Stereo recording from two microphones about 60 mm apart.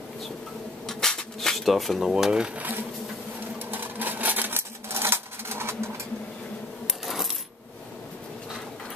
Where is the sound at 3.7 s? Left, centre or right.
Right.